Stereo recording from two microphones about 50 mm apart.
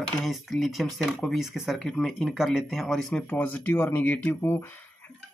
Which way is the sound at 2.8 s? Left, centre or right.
Centre.